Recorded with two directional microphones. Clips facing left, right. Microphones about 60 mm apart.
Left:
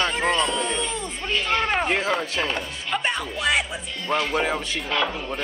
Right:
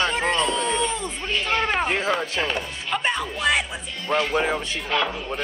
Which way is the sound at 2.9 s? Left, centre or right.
Centre.